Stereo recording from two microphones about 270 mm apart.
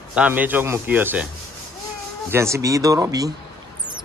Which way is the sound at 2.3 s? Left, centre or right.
Centre.